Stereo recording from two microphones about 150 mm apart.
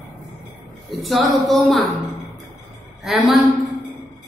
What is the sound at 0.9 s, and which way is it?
Speech, centre (ahead or behind).